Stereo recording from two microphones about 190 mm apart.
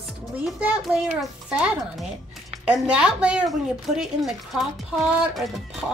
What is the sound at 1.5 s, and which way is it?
Speech, 5° right (ahead or behind).